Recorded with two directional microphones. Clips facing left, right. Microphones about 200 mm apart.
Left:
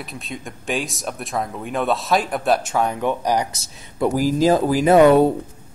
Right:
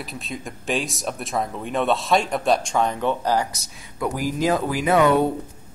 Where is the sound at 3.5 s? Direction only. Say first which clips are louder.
Left 5 dB; 30° left (ahead or behind).